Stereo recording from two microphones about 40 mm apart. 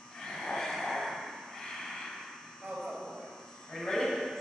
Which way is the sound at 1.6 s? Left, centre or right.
Centre.